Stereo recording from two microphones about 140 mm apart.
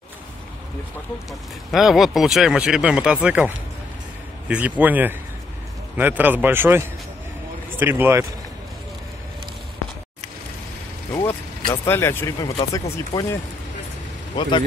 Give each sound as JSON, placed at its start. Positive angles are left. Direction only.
{"t": 1.7, "sound": "speech", "side_deg": 0}
{"t": 7.8, "sound": "speech", "side_deg": -15}
{"t": 11.2, "sound": "speech", "side_deg": 20}